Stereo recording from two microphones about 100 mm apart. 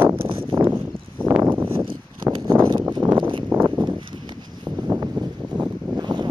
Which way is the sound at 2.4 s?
35° right (ahead or behind).